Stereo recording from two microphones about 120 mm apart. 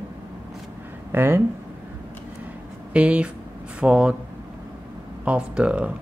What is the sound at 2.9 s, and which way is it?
Speech, 10° right (ahead or behind).